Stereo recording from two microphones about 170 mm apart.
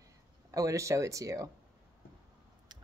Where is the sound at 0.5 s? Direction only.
20° right (ahead or behind).